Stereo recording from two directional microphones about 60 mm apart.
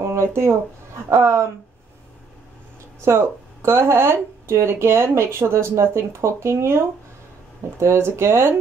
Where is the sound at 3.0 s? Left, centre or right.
Right.